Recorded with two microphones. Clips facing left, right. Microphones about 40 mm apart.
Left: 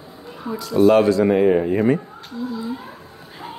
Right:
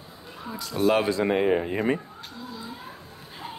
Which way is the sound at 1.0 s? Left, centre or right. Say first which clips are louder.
Left 7 dB; centre.